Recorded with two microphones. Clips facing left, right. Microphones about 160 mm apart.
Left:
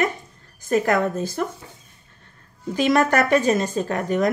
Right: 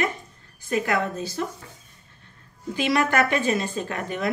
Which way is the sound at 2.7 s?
45° left (ahead or behind).